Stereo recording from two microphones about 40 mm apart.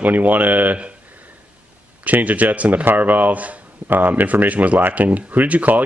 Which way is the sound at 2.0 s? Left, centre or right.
Right.